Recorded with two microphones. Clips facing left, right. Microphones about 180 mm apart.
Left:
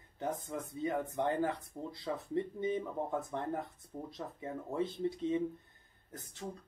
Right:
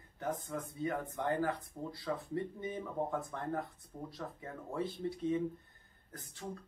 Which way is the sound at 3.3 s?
20° left (ahead or behind).